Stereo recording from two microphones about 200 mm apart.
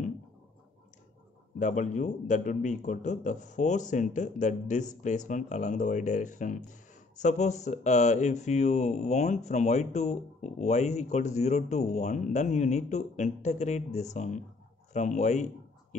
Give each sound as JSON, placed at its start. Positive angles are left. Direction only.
{"t": 1.6, "sound": "speech", "side_deg": 40}